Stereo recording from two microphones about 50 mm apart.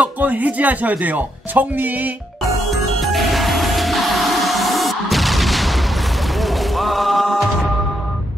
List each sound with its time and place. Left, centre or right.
0.0 s speech: right
3.0 s music: centre